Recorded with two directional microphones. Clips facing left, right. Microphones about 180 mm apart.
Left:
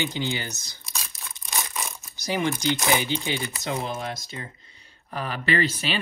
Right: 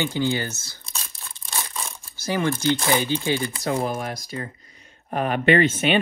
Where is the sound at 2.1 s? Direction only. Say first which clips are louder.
Right 2 dB; 15° left (ahead or behind).